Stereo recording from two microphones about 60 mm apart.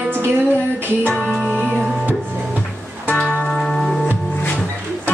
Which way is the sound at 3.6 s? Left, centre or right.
Centre.